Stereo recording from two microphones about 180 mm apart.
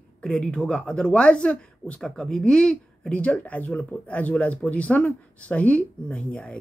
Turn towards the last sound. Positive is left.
turn(degrees=5)  # may be behind; listen again after turning